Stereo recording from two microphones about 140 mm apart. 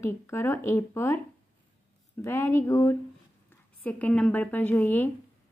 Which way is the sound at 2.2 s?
20° left (ahead or behind).